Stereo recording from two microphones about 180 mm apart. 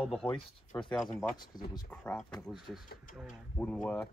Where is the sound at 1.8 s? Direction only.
10° left (ahead or behind).